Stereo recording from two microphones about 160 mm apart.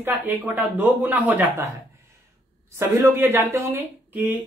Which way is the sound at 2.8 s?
15° right (ahead or behind).